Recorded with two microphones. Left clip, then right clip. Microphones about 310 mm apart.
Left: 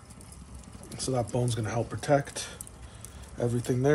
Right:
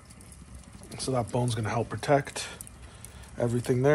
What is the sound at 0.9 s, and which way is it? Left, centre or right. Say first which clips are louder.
Speech: right 1 dB; centre.